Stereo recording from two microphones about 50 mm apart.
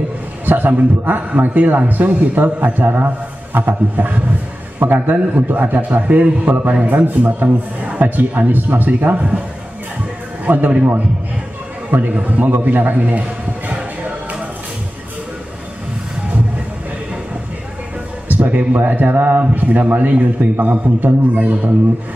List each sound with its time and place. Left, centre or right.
0.5 s a man's voice: right
10.4 s a man's voice: right
11.9 s a man's voice: right
18.3 s a man's voice: right